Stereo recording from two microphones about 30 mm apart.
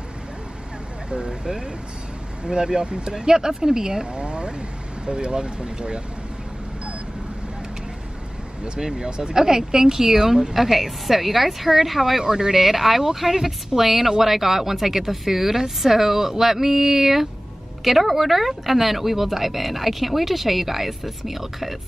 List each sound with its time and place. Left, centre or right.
1.1 s speech: right
8.7 s speech: right; by 12.2 s centre
12.2 s a woman's voice: centre
12.5 s a woman's voice: centre